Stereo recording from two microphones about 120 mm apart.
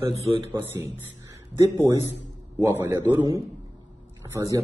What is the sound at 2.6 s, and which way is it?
Speech, 20° right (ahead or behind).